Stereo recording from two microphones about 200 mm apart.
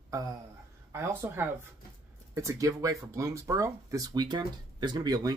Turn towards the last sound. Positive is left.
turn(degrees=-20)  # may be behind; listen again after turning